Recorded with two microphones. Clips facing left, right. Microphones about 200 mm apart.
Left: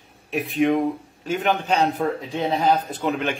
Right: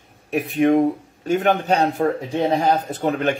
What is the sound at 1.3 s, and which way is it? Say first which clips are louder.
Speech: right 3 dB; 40° right (ahead or behind).